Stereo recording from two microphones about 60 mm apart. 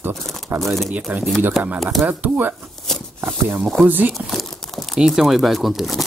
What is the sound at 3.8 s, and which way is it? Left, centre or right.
Speech, right.